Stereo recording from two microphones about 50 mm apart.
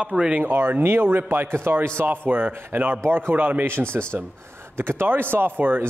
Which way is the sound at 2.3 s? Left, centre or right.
Right.